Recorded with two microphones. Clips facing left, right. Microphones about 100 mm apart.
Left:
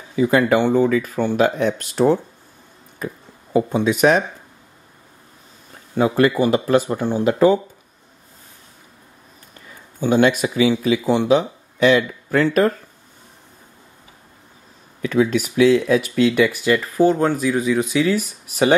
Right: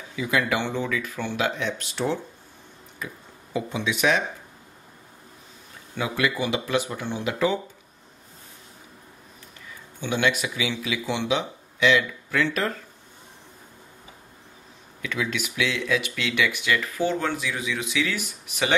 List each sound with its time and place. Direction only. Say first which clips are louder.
0.1 s speech: left 9 dB; 40° left (ahead or behind)
5.9 s speech: left 10 dB; 40° left (ahead or behind)
9.7 s speech: left 10 dB; 40° left (ahead or behind)
15.0 s speech: left 11 dB; 40° left (ahead or behind)